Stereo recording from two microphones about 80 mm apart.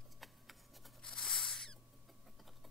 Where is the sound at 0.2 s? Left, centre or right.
Centre.